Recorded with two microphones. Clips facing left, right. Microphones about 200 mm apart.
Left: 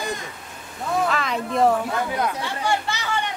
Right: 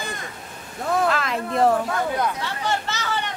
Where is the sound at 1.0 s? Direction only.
Centre (ahead or behind).